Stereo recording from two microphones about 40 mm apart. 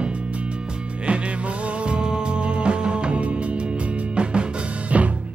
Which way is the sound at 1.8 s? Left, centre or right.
Right.